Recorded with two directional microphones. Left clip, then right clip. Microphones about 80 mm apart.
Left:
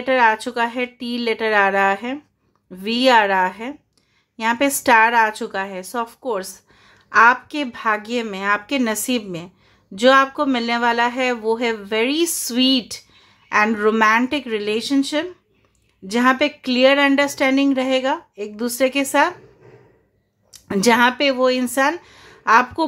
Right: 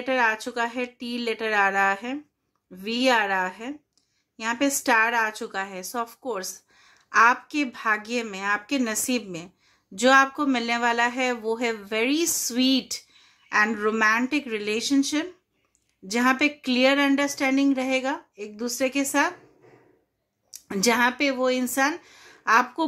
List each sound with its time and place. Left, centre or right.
0.0 s a woman's voice: left
12.2 s speech: left
14.4 s speech: left
17.1 s a woman's voice: left
20.8 s a woman's voice: left